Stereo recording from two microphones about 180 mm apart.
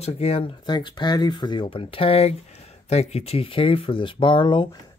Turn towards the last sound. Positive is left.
turn(degrees=25)  # may be behind; listen again after turning